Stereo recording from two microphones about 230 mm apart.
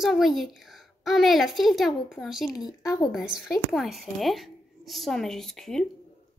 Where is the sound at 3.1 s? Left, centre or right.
Centre.